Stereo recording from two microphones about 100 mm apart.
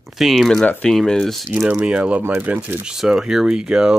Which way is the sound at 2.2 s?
20° right (ahead or behind).